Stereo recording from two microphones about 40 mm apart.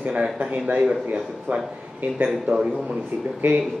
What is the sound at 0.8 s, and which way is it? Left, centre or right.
A man's voice, right.